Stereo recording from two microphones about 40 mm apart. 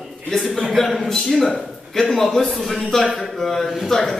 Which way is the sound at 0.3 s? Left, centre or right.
Centre.